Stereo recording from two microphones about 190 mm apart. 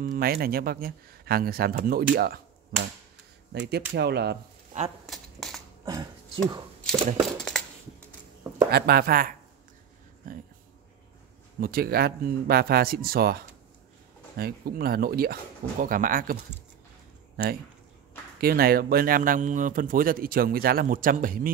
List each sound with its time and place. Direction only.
0.0 s speech: 50° right (ahead or behind)
5.0 s a sound: centre (ahead or behind)
5.9 s speech: 20° right (ahead or behind)
7.2 s a sound: centre (ahead or behind)
8.6 s speech: 55° right (ahead or behind)
11.6 s speech: 50° right (ahead or behind)
18.4 s speech: 50° right (ahead or behind)